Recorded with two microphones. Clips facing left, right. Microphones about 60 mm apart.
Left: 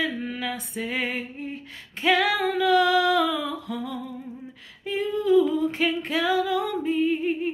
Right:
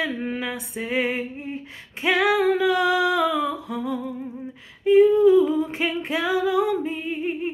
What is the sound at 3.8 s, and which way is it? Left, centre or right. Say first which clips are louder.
Humming: right 5 dB; centre.